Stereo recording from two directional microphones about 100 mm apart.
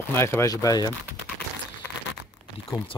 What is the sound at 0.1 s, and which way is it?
Speech, 25° left (ahead or behind).